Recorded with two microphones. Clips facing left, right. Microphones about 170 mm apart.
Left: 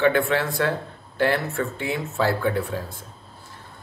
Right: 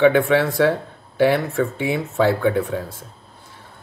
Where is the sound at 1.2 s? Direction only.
80° right.